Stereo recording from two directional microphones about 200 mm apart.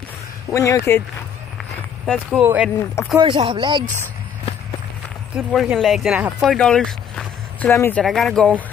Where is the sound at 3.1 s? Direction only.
25° right (ahead or behind).